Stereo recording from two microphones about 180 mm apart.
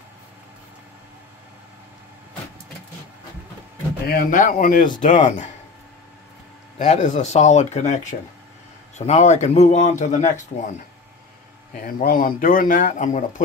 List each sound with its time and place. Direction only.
4.1 s a man's voice: 55° left (ahead or behind)
6.8 s speech: 45° left (ahead or behind)
11.7 s a man's voice: 50° left (ahead or behind)